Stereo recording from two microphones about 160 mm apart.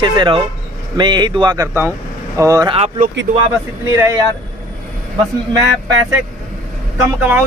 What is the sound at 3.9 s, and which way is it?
Speech, 15° right (ahead or behind).